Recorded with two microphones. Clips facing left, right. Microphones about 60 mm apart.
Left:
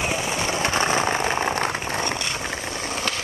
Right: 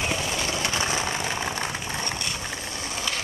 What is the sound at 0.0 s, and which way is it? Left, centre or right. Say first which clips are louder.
Vehicle: left 3 dB; centre.